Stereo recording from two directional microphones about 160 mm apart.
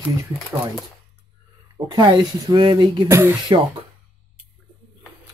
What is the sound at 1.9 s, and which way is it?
Speech, 25° right (ahead or behind).